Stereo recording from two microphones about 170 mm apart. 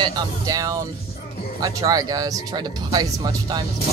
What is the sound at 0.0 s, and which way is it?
Speech, 20° right (ahead or behind).